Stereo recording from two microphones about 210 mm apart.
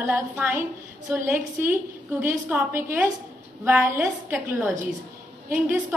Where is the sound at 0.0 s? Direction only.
10° right (ahead or behind).